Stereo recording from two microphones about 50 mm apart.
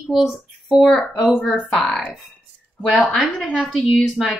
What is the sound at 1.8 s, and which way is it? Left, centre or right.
A woman's voice, centre.